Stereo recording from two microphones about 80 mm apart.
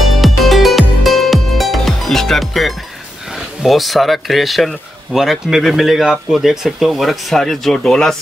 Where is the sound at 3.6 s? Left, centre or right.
Centre.